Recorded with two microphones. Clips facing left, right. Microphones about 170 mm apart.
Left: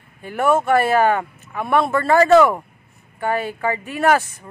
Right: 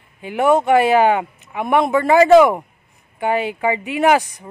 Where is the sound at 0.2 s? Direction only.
15° right (ahead or behind).